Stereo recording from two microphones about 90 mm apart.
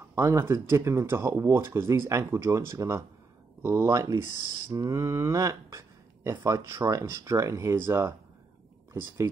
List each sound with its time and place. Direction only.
0.1 s speech: 30° right (ahead or behind)
6.3 s speech: 45° right (ahead or behind)
6.7 s speech: 35° right (ahead or behind)